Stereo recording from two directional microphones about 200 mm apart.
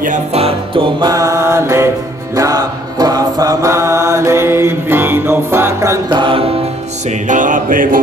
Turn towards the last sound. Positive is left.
turn(degrees=-45)  # may be behind; listen again after turning